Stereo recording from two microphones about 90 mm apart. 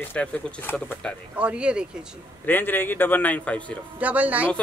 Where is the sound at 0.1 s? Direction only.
20° left (ahead or behind).